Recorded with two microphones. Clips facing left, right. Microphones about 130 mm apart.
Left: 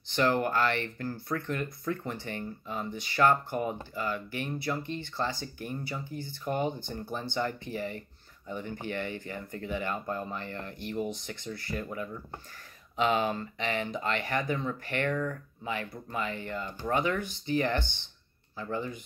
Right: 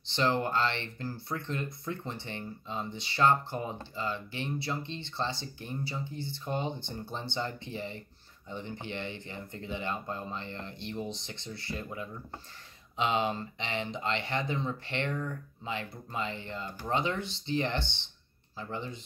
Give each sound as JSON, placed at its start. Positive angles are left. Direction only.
{"t": 0.1, "sound": "speech", "side_deg": -25}